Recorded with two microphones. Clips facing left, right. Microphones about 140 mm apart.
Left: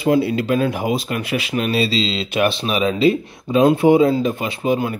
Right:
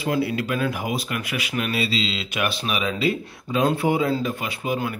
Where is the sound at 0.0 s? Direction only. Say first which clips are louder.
Left 7 dB; 25° left (ahead or behind).